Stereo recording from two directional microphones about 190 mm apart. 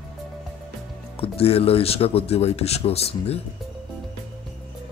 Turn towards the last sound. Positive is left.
turn(degrees=30)  # may be behind; listen again after turning